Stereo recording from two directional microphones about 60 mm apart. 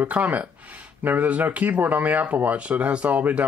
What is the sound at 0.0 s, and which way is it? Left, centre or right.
Speech, right.